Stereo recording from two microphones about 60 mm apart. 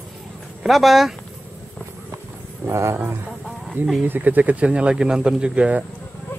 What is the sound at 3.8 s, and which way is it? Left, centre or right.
Speech, right.